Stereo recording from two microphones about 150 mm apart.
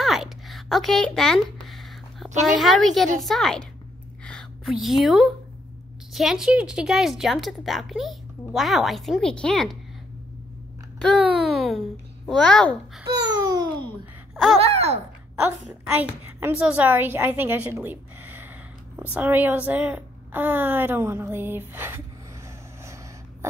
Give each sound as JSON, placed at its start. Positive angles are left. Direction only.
{"t": 0.0, "sound": "a sound", "side_deg": 0}
{"t": 2.4, "sound": "a woman's voice", "side_deg": 0}
{"t": 4.2, "sound": "a sound", "side_deg": 5}
{"t": 4.8, "sound": "a woman's voice", "side_deg": 0}
{"t": 11.1, "sound": "a woman's voice", "side_deg": -5}
{"t": 13.1, "sound": "babbling", "side_deg": -25}
{"t": 14.3, "sound": "a sound", "side_deg": 0}
{"t": 14.6, "sound": "speech", "side_deg": -45}
{"t": 16.3, "sound": "a woman's voice", "side_deg": -15}